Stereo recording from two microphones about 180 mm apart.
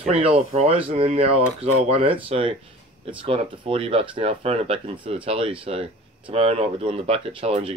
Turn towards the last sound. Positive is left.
turn(degrees=-30)  # may be behind; listen again after turning